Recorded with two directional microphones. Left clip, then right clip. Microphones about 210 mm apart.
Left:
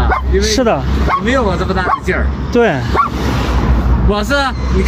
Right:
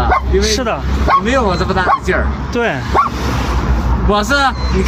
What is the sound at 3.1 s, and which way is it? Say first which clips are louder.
Bow-wow: left 1 dB; 35° left (ahead or behind).